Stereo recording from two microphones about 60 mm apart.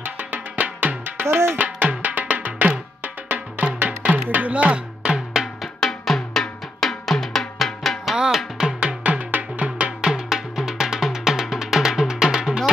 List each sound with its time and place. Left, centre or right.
0.0 s music: right
1.2 s music: right
1.6 s music: right
5.8 s drum: centre
8.7 s drum: centre